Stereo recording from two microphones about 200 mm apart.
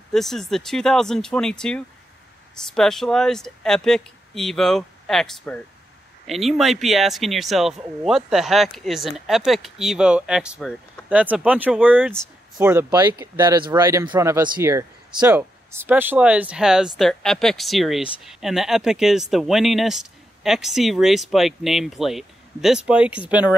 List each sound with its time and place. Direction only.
0.1 s speech: centre (ahead or behind)